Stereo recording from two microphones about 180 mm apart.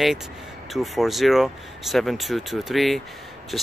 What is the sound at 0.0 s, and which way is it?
Speech, centre (ahead or behind).